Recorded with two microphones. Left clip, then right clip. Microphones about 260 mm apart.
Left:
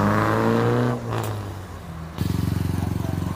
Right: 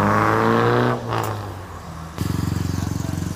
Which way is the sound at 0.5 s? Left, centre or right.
Centre.